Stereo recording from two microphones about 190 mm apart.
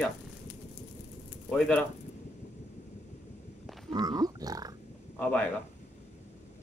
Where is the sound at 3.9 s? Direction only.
20° right (ahead or behind).